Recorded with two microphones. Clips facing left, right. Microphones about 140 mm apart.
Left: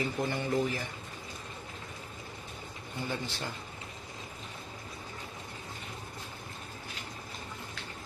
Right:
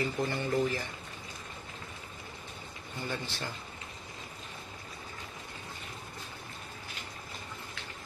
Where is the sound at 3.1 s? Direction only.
20° left (ahead or behind).